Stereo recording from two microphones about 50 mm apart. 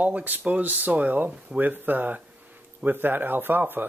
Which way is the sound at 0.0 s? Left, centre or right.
Right.